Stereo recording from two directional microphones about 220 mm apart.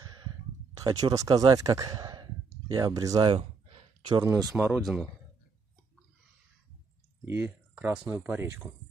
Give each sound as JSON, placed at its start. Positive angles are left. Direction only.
{"t": 0.8, "sound": "speech", "side_deg": -20}
{"t": 7.2, "sound": "speech", "side_deg": -10}